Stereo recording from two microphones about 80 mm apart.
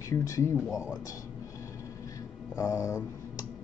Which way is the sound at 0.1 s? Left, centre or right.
Left.